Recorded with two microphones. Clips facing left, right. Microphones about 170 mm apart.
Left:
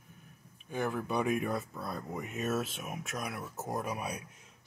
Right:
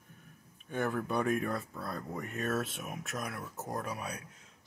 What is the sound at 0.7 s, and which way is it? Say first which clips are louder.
Speech: even; centre (ahead or behind).